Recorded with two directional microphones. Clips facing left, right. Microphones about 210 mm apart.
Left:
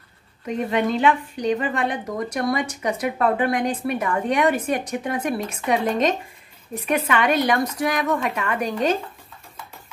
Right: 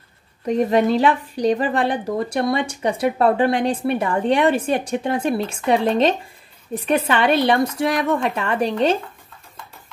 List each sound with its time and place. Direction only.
0.5 s speech: 35° right (ahead or behind)